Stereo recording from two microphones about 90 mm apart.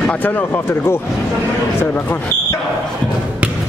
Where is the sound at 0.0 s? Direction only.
15° left (ahead or behind).